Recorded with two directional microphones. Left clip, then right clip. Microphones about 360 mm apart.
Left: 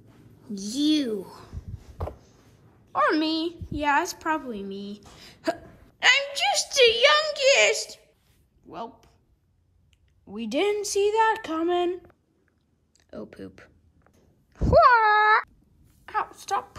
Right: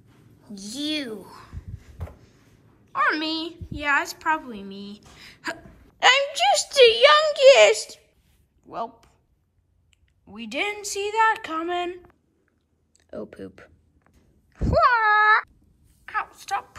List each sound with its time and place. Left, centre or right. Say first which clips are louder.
0.4 s a child's voice: left 4 dB; centre
8.6 s a sound: right 5 dB; centre
10.2 s speech: left 2 dB; centre
13.1 s speech: right 4 dB; centre
14.1 s a sound: even; centre
16.1 s speech: even; centre